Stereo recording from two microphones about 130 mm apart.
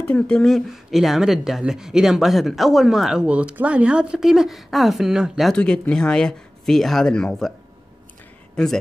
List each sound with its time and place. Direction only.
0.0 s speech: 10° left (ahead or behind)